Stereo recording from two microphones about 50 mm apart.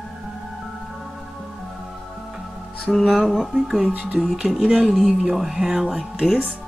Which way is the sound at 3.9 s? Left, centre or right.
Right.